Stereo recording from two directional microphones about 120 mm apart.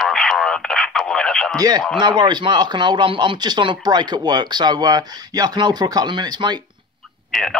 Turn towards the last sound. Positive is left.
turn(degrees=0)  # may be behind; listen again after turning